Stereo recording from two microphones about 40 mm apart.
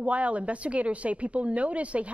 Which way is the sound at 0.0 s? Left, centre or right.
Right.